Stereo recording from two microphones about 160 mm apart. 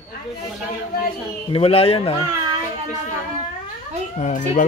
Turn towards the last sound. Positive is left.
turn(degrees=50)  # may be behind; listen again after turning